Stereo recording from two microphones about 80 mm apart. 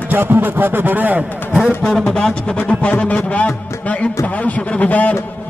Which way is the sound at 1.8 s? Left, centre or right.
Centre.